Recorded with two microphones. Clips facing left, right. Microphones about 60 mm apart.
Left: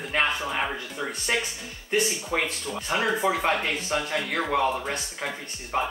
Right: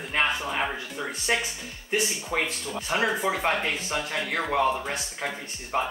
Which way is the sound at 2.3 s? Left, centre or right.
Centre.